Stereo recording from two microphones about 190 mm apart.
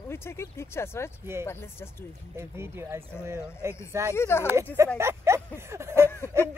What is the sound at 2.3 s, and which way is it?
Speech, 15° right (ahead or behind).